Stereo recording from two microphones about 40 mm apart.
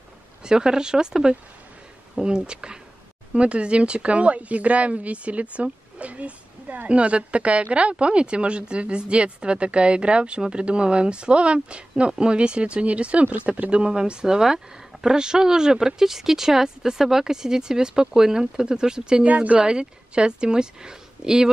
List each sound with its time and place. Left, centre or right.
0.4 s speech: centre; by 13.7 s right
13.7 s speech: right
14.2 s speech: centre
19.2 s speech: right
19.6 s speech: right